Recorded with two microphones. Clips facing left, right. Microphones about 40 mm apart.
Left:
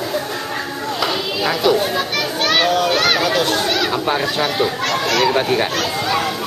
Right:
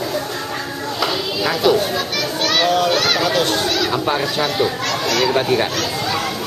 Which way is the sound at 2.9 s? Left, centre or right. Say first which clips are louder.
Left 1 dB; centre.